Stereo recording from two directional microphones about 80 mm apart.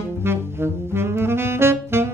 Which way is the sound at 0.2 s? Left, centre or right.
Right.